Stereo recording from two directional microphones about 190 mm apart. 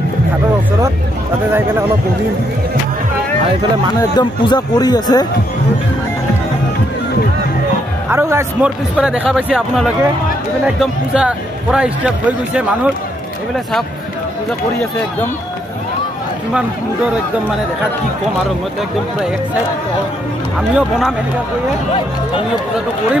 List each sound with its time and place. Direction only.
4.2 s speech: 20° left (ahead or behind)
8.1 s speech: 15° right (ahead or behind)
20.5 s speech: centre (ahead or behind)